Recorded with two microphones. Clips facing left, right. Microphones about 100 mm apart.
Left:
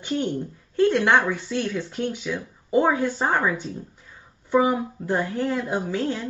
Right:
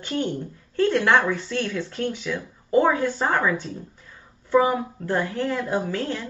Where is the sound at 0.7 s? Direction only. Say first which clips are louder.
Left 1 dB; 15° left (ahead or behind).